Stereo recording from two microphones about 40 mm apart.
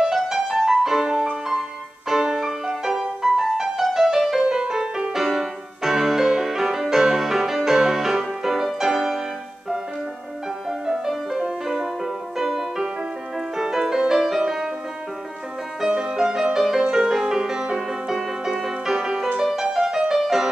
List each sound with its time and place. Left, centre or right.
0.6 s music: centre
10.9 s music: centre
15.8 s music: centre